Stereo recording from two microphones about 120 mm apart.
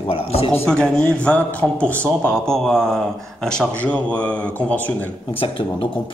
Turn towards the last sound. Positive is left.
turn(degrees=10)  # may be behind; listen again after turning